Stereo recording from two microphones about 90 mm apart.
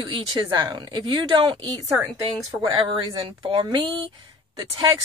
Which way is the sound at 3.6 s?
60° right (ahead or behind).